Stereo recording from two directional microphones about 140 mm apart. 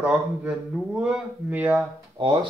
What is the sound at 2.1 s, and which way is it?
Speech, 40° right (ahead or behind).